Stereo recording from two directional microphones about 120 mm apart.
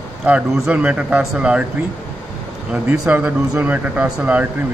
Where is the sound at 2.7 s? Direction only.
10° right (ahead or behind).